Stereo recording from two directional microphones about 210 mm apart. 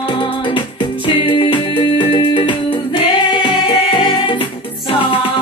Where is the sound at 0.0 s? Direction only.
25° left (ahead or behind).